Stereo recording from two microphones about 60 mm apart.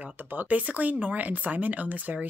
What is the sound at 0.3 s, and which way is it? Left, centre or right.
Speech, right.